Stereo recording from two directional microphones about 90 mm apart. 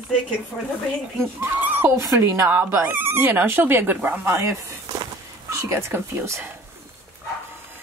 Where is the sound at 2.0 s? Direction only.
35° right (ahead or behind).